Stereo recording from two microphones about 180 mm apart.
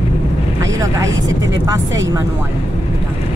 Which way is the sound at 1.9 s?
90° right.